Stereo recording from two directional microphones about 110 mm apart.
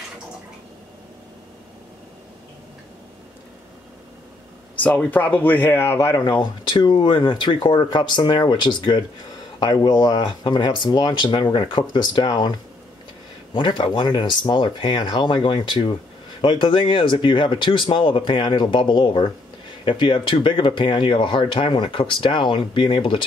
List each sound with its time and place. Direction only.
4.8 s speech: 15° left (ahead or behind); by 23.2 s 50° left (ahead or behind)